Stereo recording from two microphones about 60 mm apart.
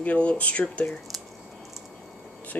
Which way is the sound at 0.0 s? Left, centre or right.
Left.